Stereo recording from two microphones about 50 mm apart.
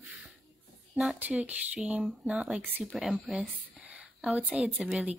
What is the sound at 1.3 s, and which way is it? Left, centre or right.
Speech, right.